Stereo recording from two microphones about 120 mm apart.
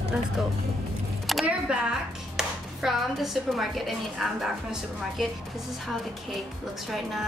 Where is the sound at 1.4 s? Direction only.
10° right (ahead or behind).